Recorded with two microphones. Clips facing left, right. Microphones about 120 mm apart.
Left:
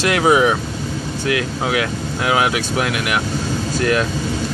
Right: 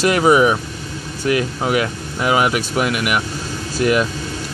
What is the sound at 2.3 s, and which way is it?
Speech, centre (ahead or behind).